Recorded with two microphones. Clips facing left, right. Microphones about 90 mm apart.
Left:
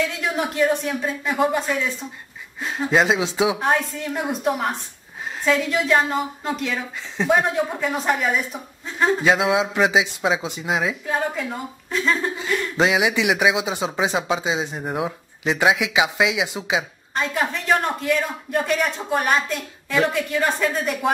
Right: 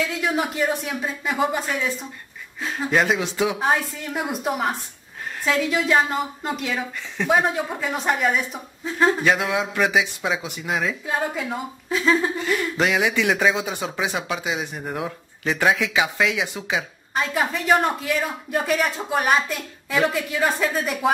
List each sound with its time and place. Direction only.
0.0 s speech: centre (ahead or behind)
2.9 s speech: 15° left (ahead or behind)
3.5 s speech: centre (ahead or behind)
9.2 s speech: 20° left (ahead or behind)
11.1 s speech: 5° right (ahead or behind)
12.7 s speech: 15° left (ahead or behind)
17.1 s speech: 5° right (ahead or behind)